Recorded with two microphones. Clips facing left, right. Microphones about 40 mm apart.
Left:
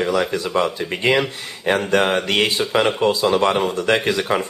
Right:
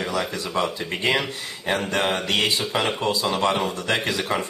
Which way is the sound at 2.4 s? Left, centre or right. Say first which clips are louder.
Left 5 dB; centre.